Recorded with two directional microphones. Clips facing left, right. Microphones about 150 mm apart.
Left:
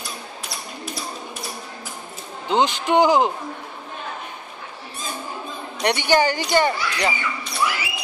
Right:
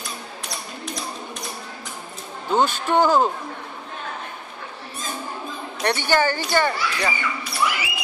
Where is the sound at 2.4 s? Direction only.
15° left (ahead or behind).